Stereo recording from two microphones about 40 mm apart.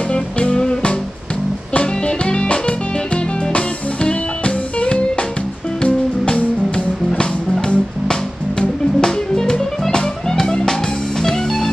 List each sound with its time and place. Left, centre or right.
0.1 s music: left
7.6 s music: centre